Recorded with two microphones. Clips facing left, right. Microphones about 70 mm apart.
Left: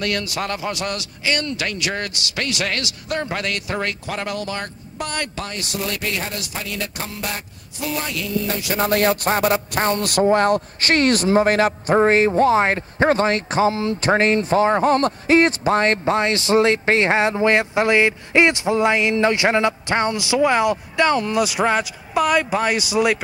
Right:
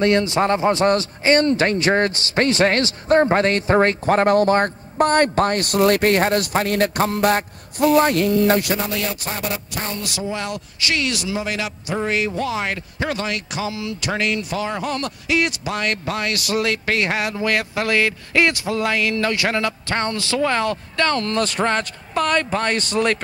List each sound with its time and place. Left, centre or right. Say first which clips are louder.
0.0 s a man's voice: right 7 dB; right
8.7 s a man's voice: left 6 dB; left; by 23.1 s centre